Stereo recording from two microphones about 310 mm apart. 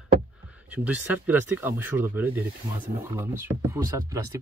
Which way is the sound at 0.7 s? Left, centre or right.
Centre.